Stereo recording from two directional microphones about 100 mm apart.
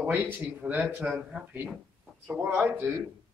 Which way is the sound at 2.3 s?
15° right (ahead or behind).